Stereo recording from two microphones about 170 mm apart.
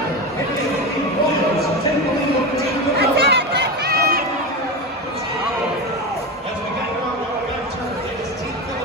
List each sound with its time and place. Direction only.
3.0 s chatter: 75° right (ahead or behind)